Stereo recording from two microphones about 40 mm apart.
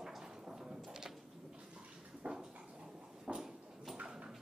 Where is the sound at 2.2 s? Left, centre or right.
Centre.